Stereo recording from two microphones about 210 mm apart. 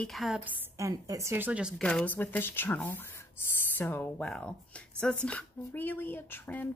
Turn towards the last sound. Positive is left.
turn(degrees=10)  # may be behind; listen again after turning